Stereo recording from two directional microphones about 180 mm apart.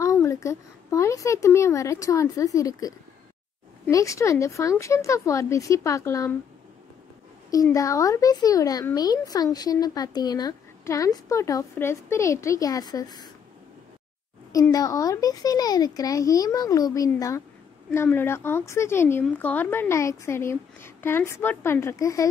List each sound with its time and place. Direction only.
0.0 s a child's voice: 15° left (ahead or behind)
7.5 s speech: 20° left (ahead or behind)
14.5 s a woman's voice: 20° left (ahead or behind)